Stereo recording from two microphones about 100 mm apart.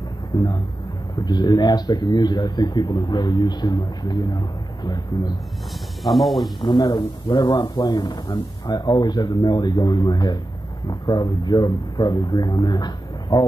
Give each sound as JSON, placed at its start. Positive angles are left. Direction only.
{"t": 0.3, "sound": "speech", "side_deg": 45}
{"t": 6.0, "sound": "speech", "side_deg": 0}
{"t": 6.8, "sound": "speech", "side_deg": 40}